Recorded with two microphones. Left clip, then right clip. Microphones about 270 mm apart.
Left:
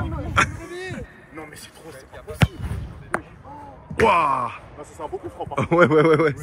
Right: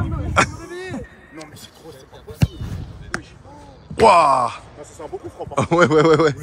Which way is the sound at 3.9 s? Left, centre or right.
Centre.